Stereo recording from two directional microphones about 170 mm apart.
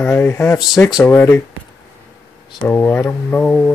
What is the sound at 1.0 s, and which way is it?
Speech, 10° left (ahead or behind).